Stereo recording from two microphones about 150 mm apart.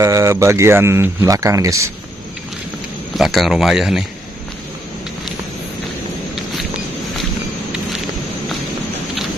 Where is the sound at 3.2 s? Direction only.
Centre (ahead or behind).